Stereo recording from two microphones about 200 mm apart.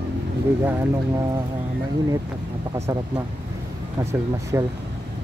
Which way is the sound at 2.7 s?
15° right (ahead or behind).